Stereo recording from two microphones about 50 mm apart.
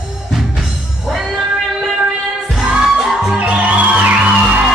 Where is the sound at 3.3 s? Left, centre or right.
Right.